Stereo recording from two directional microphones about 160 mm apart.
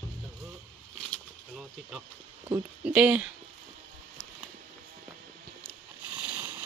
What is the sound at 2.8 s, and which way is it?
Speech, 5° right (ahead or behind).